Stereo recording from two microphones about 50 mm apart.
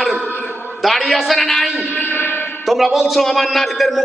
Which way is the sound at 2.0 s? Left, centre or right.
Left.